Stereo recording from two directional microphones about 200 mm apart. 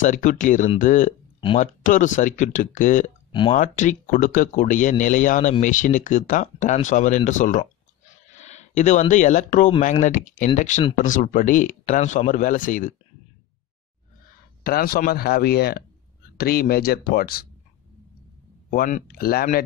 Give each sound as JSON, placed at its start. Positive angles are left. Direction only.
{"t": 0.0, "sound": "speech", "side_deg": 40}
{"t": 3.3, "sound": "a sound", "side_deg": 25}
{"t": 3.5, "sound": "speech", "side_deg": 40}
{"t": 14.6, "sound": "speech", "side_deg": 50}
{"t": 18.7, "sound": "speech", "side_deg": 40}